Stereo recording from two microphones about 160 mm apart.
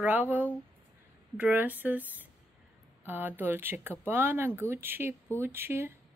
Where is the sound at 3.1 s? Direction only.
10° right (ahead or behind).